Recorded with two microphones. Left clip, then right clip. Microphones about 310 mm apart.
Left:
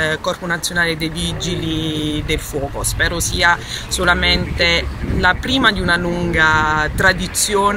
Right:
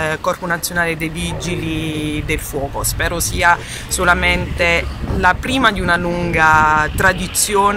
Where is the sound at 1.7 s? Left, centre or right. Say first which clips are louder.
Left 2 dB; right.